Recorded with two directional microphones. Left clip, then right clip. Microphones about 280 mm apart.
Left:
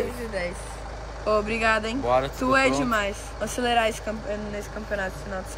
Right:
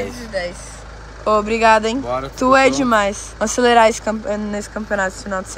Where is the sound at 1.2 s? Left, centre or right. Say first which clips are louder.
Right 9 dB; centre.